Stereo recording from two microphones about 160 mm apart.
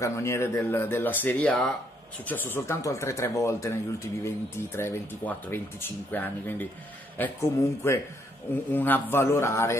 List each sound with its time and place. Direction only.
0.0 s speech: 20° left (ahead or behind)